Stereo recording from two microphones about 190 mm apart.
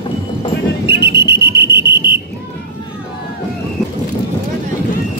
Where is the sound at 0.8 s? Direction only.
60° right (ahead or behind).